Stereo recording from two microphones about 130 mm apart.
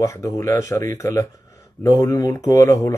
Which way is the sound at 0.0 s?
25° left (ahead or behind).